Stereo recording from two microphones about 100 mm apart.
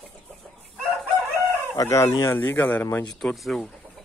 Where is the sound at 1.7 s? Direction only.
30° left (ahead or behind); by 3.7 s centre (ahead or behind).